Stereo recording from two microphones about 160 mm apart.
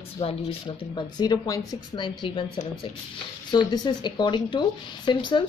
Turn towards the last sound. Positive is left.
turn(degrees=30)  # may be behind; listen again after turning